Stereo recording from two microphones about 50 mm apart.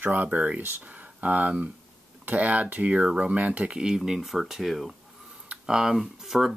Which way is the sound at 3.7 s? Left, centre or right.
Centre.